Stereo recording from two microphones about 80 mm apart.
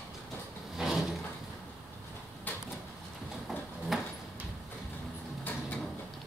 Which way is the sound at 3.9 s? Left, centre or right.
Centre.